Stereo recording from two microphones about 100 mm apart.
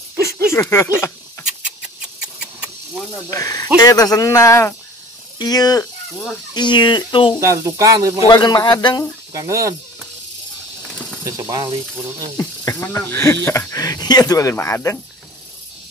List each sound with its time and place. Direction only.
0.5 s speech: 30° left (ahead or behind)
1.8 s engine: 10° right (ahead or behind)
3.3 s speech: 35° left (ahead or behind); by 7.3 s 55° left (ahead or behind)
7.3 s speech: 30° right (ahead or behind)
8.3 s speech: 40° left (ahead or behind)
9.3 s speech: 35° right (ahead or behind)
11.2 s speech: 35° right (ahead or behind)
12.4 s speech: 30° left (ahead or behind)
13.7 s speech: 40° left (ahead or behind)